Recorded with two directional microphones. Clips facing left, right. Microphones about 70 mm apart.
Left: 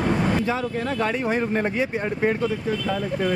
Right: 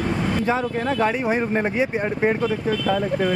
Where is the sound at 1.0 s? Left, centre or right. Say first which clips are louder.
Right 2 dB; centre.